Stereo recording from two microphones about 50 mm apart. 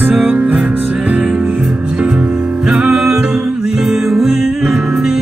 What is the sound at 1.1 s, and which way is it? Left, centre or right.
Music, centre.